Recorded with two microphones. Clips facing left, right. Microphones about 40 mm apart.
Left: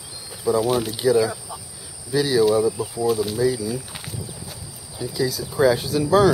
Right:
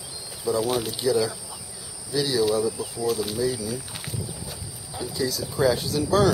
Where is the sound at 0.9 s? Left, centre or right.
Centre.